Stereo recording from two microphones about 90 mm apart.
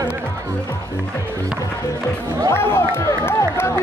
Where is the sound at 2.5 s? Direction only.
25° left (ahead or behind).